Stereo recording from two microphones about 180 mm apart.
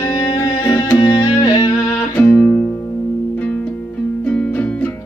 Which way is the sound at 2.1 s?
10° left (ahead or behind).